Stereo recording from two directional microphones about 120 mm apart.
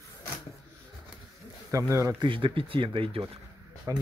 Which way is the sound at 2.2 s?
45° right (ahead or behind).